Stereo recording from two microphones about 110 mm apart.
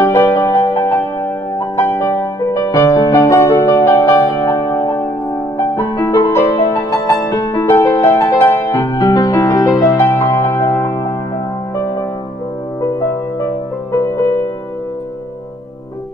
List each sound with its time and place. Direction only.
0.0 s music: 25° left (ahead or behind)
12.8 s music: 30° left (ahead or behind)